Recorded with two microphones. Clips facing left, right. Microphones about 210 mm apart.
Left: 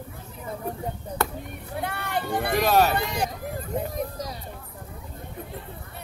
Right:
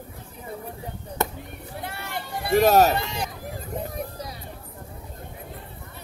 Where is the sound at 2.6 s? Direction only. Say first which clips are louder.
Right 4 dB; 40° right (ahead or behind).